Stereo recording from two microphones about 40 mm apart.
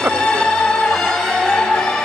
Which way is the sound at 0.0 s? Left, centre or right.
Centre.